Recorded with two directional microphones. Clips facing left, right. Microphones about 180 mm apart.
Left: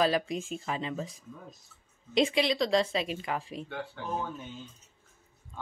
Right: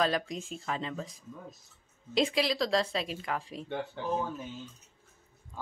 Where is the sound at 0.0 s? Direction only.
5° left (ahead or behind).